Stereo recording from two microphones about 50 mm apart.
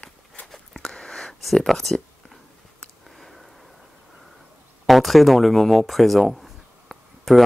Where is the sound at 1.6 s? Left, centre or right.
Centre.